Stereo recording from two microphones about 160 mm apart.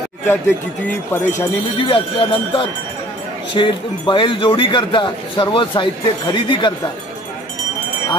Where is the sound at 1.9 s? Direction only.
30° left (ahead or behind).